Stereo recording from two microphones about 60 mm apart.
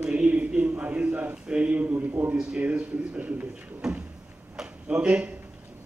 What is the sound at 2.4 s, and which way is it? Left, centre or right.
A man's voice, right.